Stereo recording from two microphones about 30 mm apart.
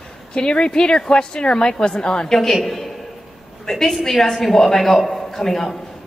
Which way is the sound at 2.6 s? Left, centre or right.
Centre.